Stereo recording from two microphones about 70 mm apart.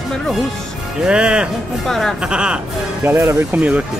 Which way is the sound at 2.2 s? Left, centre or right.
Centre.